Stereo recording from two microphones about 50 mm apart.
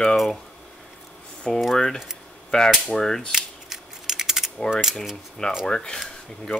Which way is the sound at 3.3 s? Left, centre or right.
Centre.